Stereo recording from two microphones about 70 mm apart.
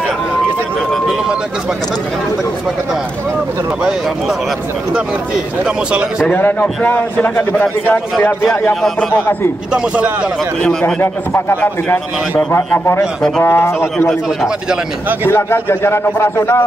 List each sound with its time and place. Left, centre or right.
5.9 s a man's voice: centre
6.2 s a man's voice: left
9.7 s a man's voice: centre
10.6 s a man's voice: centre
11.0 s a man's voice: left
15.2 s a man's voice: left